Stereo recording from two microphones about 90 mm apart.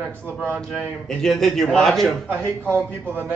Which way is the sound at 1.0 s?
5° left (ahead or behind).